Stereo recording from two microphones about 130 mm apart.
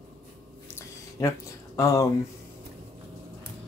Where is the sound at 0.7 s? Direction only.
20° left (ahead or behind).